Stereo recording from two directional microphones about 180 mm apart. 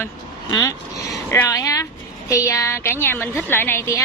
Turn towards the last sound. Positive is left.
turn(degrees=15)  # may be behind; listen again after turning